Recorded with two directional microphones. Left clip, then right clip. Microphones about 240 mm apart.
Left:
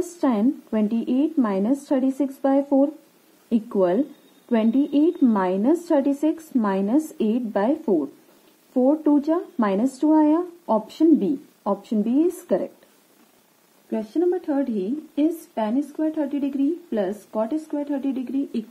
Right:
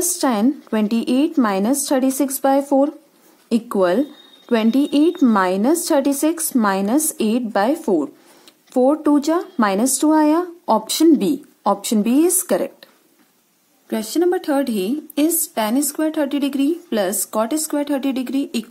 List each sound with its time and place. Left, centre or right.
0.2 s a woman's voice: right
13.8 s a woman's voice: right